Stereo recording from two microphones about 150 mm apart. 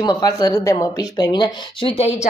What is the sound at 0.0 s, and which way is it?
Speech, 25° left (ahead or behind).